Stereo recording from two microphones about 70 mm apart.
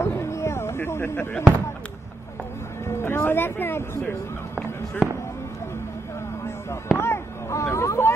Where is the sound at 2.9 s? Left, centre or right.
Left.